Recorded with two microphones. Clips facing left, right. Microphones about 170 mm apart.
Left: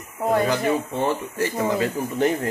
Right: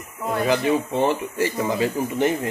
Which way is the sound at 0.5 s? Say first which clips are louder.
Right 2 dB; 20° right (ahead or behind).